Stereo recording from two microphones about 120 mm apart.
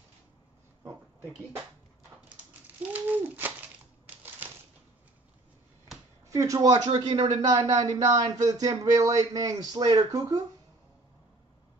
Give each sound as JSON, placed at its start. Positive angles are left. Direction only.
{"t": 2.2, "sound": "a sound", "side_deg": -15}
{"t": 6.3, "sound": "speech", "side_deg": -30}
{"t": 6.9, "sound": "speech", "side_deg": -50}
{"t": 7.4, "sound": "speech", "side_deg": -35}